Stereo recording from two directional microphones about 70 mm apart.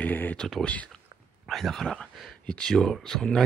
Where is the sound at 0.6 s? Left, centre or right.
Centre.